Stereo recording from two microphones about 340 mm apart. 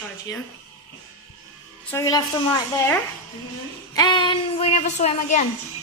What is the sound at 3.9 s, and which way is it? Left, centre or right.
A woman's voice, centre.